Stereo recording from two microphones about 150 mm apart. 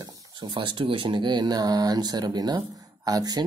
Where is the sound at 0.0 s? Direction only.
25° right (ahead or behind).